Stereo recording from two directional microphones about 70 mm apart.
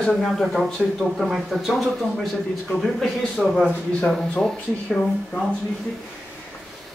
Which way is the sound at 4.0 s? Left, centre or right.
Centre.